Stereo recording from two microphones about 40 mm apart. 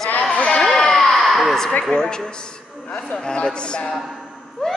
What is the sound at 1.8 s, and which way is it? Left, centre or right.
Speech, centre.